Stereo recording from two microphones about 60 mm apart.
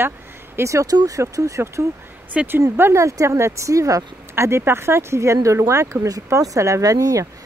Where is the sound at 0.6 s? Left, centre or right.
Right.